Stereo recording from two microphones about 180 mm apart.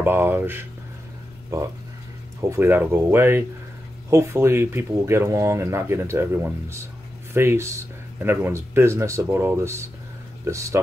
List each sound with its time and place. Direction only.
0.0 s speech: 10° right (ahead or behind)
2.5 s speech: 10° right (ahead or behind)